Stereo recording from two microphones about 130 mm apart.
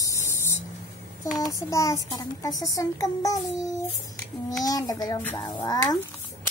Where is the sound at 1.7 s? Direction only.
25° left (ahead or behind).